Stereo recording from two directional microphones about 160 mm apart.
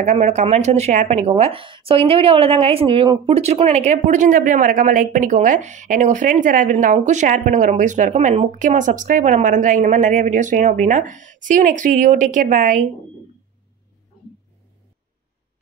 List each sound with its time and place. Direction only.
0.0 s speech: 45° right (ahead or behind)